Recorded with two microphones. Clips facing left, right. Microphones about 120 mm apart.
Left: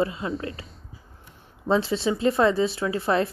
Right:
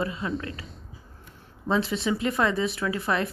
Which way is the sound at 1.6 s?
30° left (ahead or behind).